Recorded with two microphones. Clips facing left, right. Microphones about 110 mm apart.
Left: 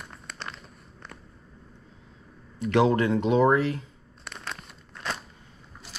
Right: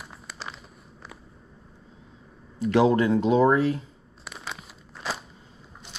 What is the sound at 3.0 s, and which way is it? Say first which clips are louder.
Speech: right 1 dB; 35° right (ahead or behind).